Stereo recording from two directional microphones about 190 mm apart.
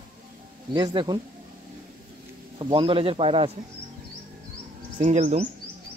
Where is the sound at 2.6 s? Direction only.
25° right (ahead or behind).